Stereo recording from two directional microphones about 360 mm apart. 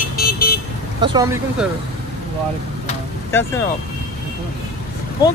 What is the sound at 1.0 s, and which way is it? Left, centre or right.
Speech, centre.